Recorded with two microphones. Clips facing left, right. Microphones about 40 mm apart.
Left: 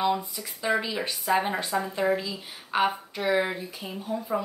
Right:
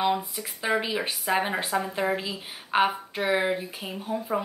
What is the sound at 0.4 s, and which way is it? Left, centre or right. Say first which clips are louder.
Speech: even; right.